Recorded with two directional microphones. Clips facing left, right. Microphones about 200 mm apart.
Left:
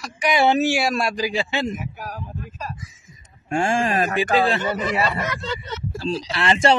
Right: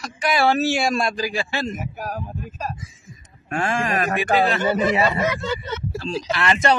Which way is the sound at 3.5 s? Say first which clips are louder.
Left 2 dB; 25° left (ahead or behind).